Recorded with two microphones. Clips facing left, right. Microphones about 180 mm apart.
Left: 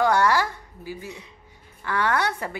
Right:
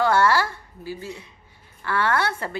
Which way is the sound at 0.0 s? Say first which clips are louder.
Right 1 dB; 15° left (ahead or behind).